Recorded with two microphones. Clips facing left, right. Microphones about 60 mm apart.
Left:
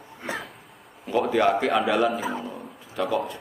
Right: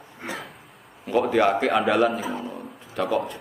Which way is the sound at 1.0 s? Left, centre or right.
Centre.